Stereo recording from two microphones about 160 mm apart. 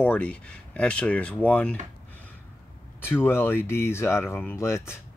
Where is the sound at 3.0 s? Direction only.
15° left (ahead or behind).